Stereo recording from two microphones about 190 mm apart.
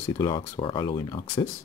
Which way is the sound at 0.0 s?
20° left (ahead or behind).